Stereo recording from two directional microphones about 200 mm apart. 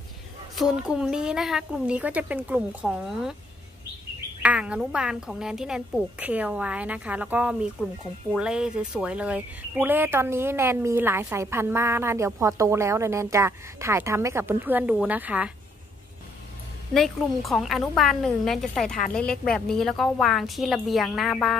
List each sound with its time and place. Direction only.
0.6 s speech: 5° right (ahead or behind)
4.4 s speech: 5° right (ahead or behind)
16.9 s speech: centre (ahead or behind)